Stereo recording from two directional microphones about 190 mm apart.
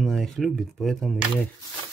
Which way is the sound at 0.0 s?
Centre (ahead or behind).